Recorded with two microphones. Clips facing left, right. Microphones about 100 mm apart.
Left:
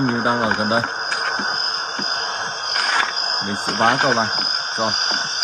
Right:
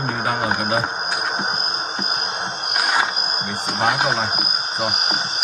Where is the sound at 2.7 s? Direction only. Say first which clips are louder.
Right 1 dB; 10° right (ahead or behind).